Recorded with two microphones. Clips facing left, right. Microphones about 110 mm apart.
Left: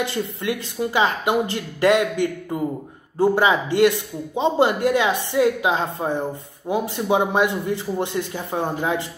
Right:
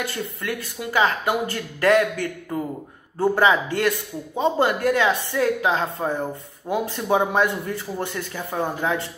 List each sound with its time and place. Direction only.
0.0 s speech: 15° left (ahead or behind)